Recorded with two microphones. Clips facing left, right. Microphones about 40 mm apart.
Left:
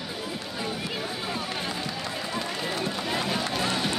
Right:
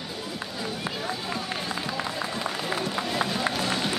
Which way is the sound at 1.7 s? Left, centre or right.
Centre.